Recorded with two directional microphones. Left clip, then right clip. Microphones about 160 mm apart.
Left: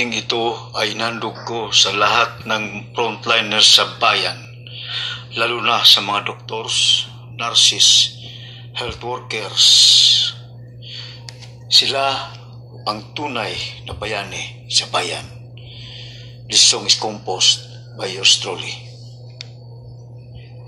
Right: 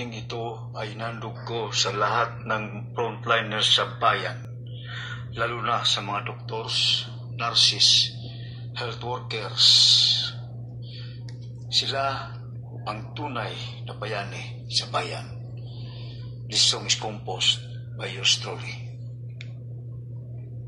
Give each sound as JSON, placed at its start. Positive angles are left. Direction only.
{"t": 0.0, "sound": "a man's voice", "side_deg": 90}
{"t": 1.6, "sound": "a man's voice", "side_deg": 25}
{"t": 6.0, "sound": "speech", "side_deg": 70}
{"t": 10.9, "sound": "a sound", "side_deg": 55}
{"t": 12.8, "sound": "speech", "side_deg": 70}
{"t": 15.8, "sound": "a sound", "side_deg": 50}
{"t": 17.0, "sound": "speech", "side_deg": 80}